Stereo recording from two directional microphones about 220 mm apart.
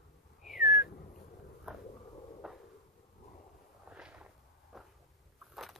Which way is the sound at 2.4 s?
Centre (ahead or behind).